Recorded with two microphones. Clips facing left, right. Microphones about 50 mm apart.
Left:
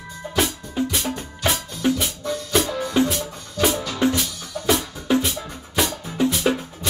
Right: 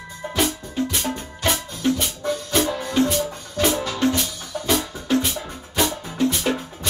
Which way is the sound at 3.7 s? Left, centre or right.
Right.